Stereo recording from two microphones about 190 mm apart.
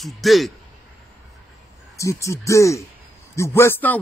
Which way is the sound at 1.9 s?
15° left (ahead or behind).